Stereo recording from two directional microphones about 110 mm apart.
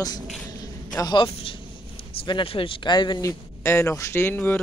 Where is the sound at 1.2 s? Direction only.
55° left (ahead or behind).